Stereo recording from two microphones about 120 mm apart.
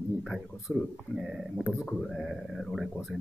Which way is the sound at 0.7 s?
15° right (ahead or behind).